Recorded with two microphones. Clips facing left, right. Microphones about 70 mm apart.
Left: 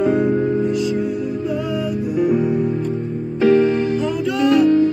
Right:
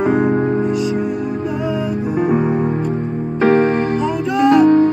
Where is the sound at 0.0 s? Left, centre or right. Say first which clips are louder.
Right 1 dB; right.